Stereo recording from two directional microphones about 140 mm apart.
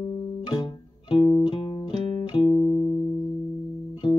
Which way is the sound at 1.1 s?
35° left (ahead or behind).